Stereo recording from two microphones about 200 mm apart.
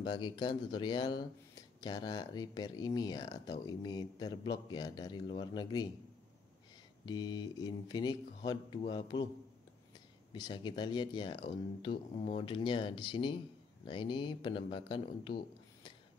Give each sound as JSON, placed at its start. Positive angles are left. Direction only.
{"t": 0.0, "sound": "speech", "side_deg": 25}
{"t": 7.1, "sound": "speech", "side_deg": 20}
{"t": 10.3, "sound": "speech", "side_deg": 20}